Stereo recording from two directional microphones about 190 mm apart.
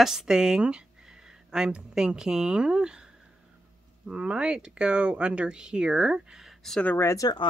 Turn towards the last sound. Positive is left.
turn(degrees=20)  # may be behind; listen again after turning